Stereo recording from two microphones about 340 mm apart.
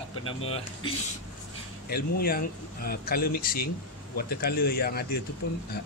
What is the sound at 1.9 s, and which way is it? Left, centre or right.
Speech, left.